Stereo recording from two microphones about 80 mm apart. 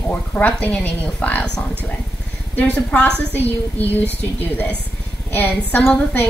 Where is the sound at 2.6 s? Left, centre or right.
Centre.